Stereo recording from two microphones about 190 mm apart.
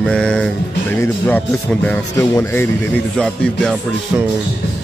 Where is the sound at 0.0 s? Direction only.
5° left (ahead or behind).